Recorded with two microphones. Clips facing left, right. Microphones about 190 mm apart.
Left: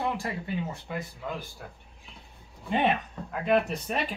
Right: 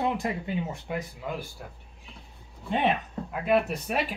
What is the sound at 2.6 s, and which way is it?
Speech, centre (ahead or behind).